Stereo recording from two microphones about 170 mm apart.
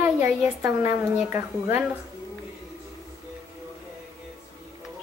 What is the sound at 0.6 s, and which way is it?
A woman's voice, 15° right (ahead or behind).